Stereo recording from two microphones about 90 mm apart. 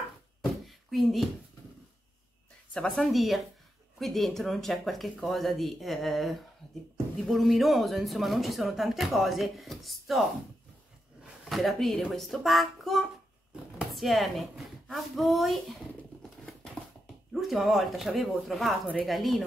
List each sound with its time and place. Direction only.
0.7 s a sound: centre (ahead or behind)
2.7 s a woman's voice: 10° left (ahead or behind)
3.1 s speech: centre (ahead or behind)
11.4 s speech: centre (ahead or behind)
16.2 s patter: 5° left (ahead or behind)
17.3 s speech: centre (ahead or behind)